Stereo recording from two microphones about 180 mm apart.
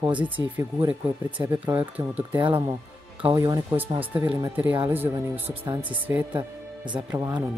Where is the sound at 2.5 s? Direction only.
25° right (ahead or behind); by 6.2 s 10° right (ahead or behind).